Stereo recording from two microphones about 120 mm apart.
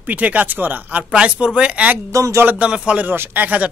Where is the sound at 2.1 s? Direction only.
25° right (ahead or behind).